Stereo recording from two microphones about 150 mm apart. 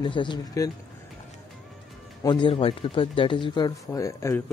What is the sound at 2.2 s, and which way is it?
Speech, 35° left (ahead or behind).